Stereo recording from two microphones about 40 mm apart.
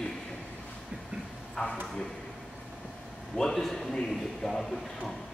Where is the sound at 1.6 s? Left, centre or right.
Left.